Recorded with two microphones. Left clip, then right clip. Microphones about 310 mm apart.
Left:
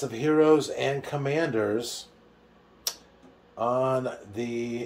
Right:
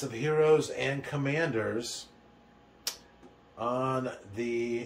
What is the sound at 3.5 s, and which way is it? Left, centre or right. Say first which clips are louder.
Speech: left 6 dB; left.